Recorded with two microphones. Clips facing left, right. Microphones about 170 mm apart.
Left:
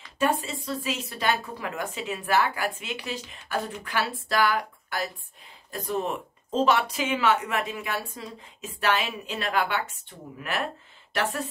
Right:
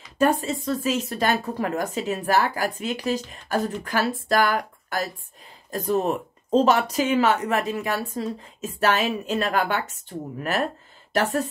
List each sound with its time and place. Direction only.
0.2 s speech: 45° right (ahead or behind)